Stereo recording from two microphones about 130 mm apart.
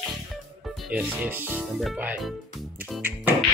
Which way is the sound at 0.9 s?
15° right (ahead or behind).